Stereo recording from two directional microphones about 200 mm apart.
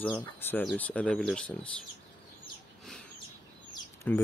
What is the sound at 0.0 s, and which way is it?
Speech, 10° left (ahead or behind).